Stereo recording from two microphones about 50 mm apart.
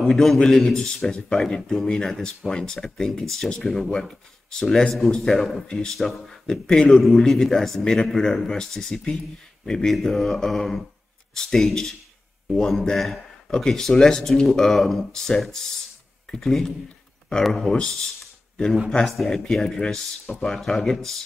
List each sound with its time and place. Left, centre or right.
0.0 s a man's voice: centre
7.8 s speech: centre
9.9 s a man's voice: centre
19.0 s speech: centre